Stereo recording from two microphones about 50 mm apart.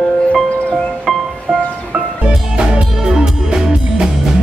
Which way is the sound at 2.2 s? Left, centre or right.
Right.